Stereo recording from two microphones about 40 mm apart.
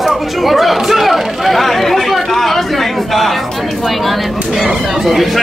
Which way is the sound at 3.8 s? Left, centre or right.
Centre.